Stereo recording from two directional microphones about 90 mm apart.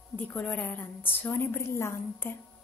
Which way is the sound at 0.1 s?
20° left (ahead or behind).